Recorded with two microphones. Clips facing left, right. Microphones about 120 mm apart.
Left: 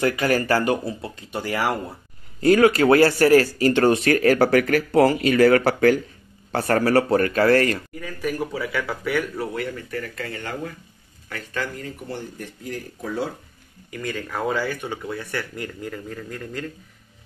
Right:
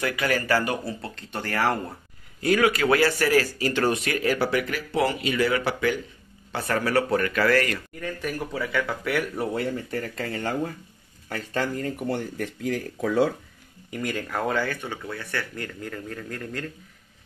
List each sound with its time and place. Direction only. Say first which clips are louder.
0.0 s speech: left 5 dB; 35° left (ahead or behind)
1.0 s speech: left 3 dB; 10° left (ahead or behind)
2.4 s speech: left 6 dB; 35° left (ahead or behind)
4.0 s speech: left 7 dB; 50° left (ahead or behind); by 7.8 s 30° left (ahead or behind)
8.0 s speech: left 1 dB; 5° left (ahead or behind)
9.4 s speech: right 1 dB; 30° right (ahead or behind)
11.8 s speech: right 5 dB; 55° right (ahead or behind)
14.3 s speech: left 2 dB; 5° left (ahead or behind)